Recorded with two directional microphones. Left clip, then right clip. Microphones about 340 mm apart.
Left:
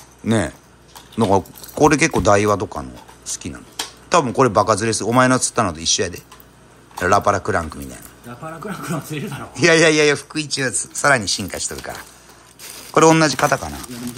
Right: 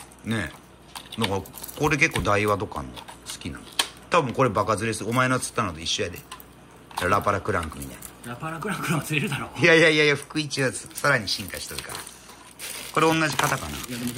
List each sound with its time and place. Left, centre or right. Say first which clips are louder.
0.9 s speech: left 10 dB; centre
12.9 s speech: left 8 dB; centre